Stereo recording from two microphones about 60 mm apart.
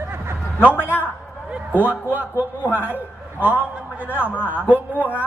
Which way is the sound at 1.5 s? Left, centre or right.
Right.